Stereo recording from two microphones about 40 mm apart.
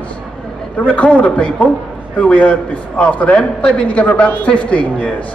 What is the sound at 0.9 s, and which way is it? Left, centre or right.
A man's voice, left.